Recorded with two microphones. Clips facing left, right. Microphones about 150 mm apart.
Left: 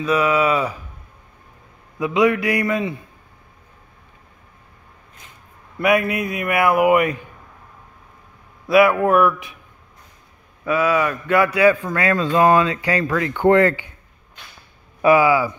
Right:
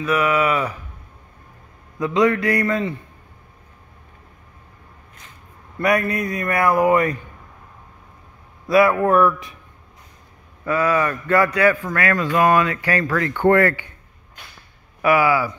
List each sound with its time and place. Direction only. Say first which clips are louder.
0.0 s speech: left 1 dB; 15° left (ahead or behind)
2.0 s speech: even; 10° left (ahead or behind)
5.8 s a man's voice: left 1 dB; 5° left (ahead or behind)
8.6 s a man's voice: left 1 dB; centre (ahead or behind)
10.6 s a man's voice: left 1 dB; 5° left (ahead or behind)
11.5 s speech: left 2 dB; 15° left (ahead or behind)
15.0 s speech: left 3 dB; 20° left (ahead or behind)